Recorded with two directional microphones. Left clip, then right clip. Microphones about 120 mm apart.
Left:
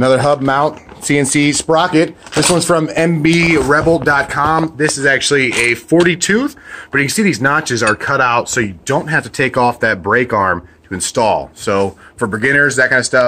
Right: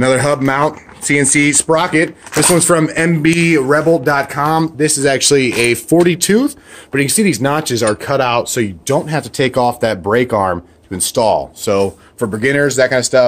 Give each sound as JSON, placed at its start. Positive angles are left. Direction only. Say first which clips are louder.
{"t": 0.0, "sound": "speech", "louder": "left 1 dB", "side_deg": -10}
{"t": 1.0, "sound": "speech", "louder": "right 1 dB", "side_deg": 15}
{"t": 1.5, "sound": "speech", "louder": "left 1 dB", "side_deg": 0}
{"t": 4.9, "sound": "speech", "louder": "right 1 dB", "side_deg": -50}
{"t": 6.0, "sound": "speech", "louder": "right 1 dB", "side_deg": -40}
{"t": 6.9, "sound": "speech", "louder": "even", "side_deg": -15}
{"t": 8.5, "sound": "speech", "louder": "even", "side_deg": -20}